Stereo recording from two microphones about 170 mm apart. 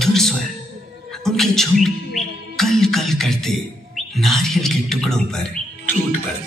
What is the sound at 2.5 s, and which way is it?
Bird, centre (ahead or behind).